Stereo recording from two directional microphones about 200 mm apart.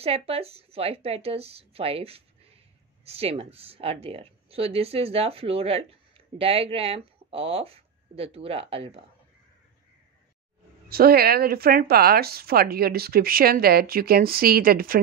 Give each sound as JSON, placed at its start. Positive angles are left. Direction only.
{"t": 0.0, "sound": "speech", "side_deg": -30}
{"t": 10.9, "sound": "speech", "side_deg": -50}